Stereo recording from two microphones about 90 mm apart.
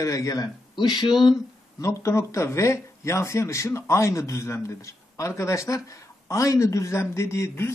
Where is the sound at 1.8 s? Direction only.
35° left (ahead or behind).